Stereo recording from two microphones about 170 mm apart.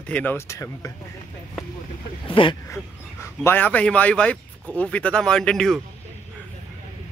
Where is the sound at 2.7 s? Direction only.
15° left (ahead or behind).